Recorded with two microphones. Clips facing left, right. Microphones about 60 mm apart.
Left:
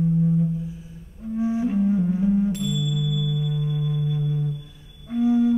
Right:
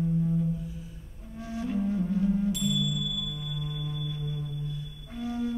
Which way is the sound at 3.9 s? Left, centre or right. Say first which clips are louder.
Left 9 dB; centre.